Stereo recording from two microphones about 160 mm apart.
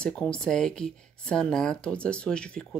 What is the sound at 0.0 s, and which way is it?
Speech, 5° left (ahead or behind).